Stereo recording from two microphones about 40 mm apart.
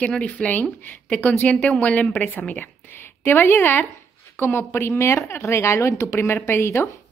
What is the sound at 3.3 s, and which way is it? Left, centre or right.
Speech, left.